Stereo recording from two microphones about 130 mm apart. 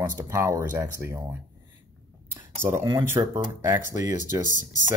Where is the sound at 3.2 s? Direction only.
25° right (ahead or behind).